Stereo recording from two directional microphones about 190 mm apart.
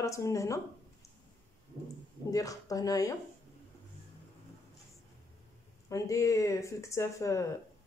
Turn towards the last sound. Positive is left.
turn(degrees=15)  # may be behind; listen again after turning